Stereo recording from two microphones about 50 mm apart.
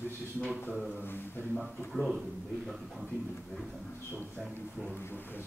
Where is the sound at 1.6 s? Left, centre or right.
Centre.